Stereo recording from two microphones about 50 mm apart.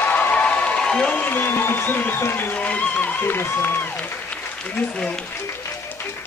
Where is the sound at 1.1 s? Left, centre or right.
Left.